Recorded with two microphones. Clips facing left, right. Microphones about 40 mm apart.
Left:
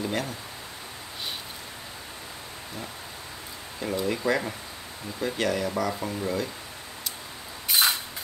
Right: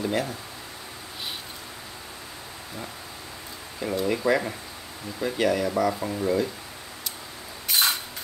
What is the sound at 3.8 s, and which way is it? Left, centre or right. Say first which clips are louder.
Speech: right 2 dB; centre.